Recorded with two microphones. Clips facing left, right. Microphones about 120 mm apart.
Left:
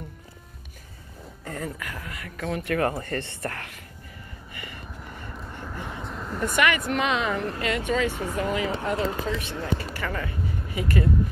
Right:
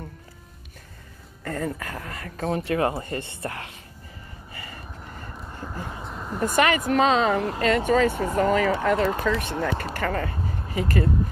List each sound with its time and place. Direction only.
1.4 s speech: 45° right (ahead or behind); by 3.8 s 20° right (ahead or behind)
4.6 s vehicle: 35° right (ahead or behind)
5.5 s vehicle: 15° right (ahead or behind)
6.4 s speech: 35° right (ahead or behind)